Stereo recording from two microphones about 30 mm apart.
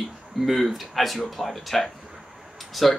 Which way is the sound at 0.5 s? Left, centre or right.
Centre.